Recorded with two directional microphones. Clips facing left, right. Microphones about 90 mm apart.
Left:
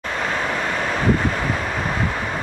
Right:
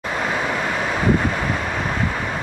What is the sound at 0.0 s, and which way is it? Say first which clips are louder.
Vehicle: right 1 dB; 5° right (ahead or behind).